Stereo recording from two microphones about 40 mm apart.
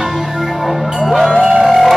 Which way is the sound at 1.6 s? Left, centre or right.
Centre.